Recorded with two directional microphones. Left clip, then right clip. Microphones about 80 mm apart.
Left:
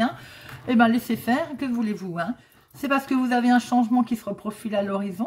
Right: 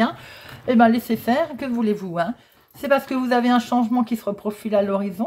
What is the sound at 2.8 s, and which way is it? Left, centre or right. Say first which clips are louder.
Speech: right 4 dB; right.